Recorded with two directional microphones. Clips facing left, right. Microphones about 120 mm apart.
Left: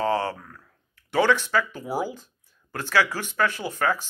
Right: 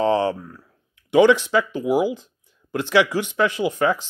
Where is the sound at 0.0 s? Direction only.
20° right (ahead or behind).